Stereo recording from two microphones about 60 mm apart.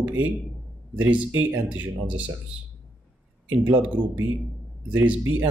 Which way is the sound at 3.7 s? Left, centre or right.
Right.